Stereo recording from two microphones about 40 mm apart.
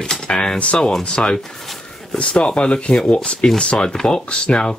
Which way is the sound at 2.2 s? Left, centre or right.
Left.